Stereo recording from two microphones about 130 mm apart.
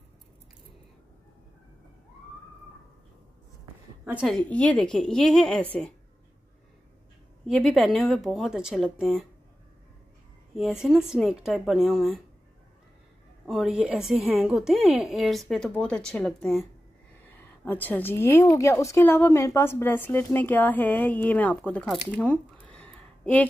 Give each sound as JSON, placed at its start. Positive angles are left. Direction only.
{"t": 4.0, "sound": "a woman's voice", "side_deg": -10}
{"t": 4.3, "sound": "a woman's voice", "side_deg": 10}
{"t": 7.4, "sound": "a woman's voice", "side_deg": 0}
{"t": 10.5, "sound": "a woman's voice", "side_deg": 0}
{"t": 13.5, "sound": "a woman's voice", "side_deg": -5}
{"t": 17.3, "sound": "a woman's voice", "side_deg": 15}
{"t": 22.1, "sound": "a sound", "side_deg": 10}